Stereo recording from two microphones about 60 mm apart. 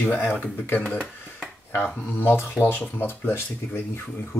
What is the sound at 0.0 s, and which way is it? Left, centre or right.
Speech, left.